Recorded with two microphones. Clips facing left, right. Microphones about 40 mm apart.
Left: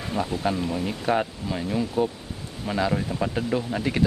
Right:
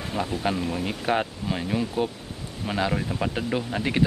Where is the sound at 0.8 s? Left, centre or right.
Right.